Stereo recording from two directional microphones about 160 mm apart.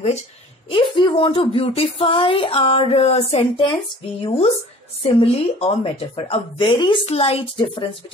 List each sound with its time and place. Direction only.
0.7 s speech: 30° left (ahead or behind)